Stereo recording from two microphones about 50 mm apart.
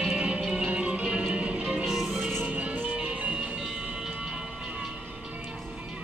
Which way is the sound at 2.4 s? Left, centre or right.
Right.